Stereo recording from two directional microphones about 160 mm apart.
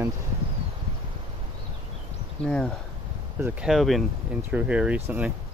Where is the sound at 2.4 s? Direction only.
5° left (ahead or behind).